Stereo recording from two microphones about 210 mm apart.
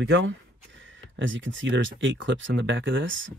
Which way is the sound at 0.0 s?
65° right (ahead or behind).